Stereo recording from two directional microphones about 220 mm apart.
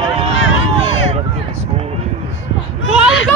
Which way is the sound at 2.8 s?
60° left (ahead or behind).